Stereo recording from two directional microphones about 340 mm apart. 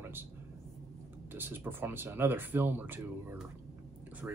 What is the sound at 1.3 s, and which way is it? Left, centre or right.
Speech, centre.